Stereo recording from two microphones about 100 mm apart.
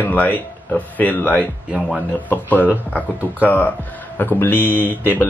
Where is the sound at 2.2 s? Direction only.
20° left (ahead or behind).